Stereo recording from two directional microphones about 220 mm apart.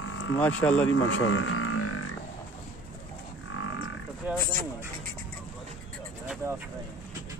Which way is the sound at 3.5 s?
65° left (ahead or behind).